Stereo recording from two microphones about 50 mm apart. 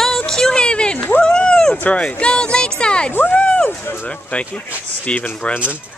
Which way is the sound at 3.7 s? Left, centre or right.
Left.